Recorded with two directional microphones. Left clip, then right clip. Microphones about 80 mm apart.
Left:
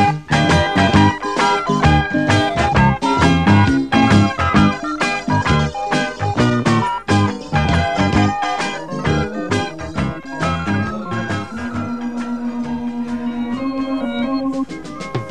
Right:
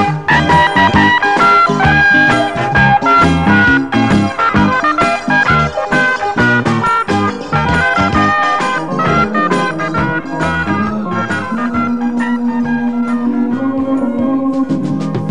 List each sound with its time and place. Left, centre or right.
0.0 s music: right